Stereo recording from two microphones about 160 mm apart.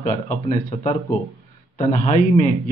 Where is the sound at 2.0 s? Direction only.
55° left (ahead or behind).